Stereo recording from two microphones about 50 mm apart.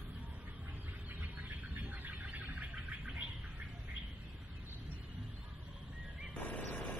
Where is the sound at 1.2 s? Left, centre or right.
Right.